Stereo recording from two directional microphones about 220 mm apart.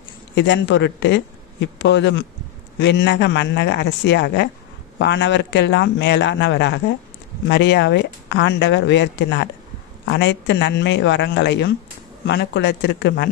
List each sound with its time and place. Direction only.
0.3 s speech: 55° left (ahead or behind)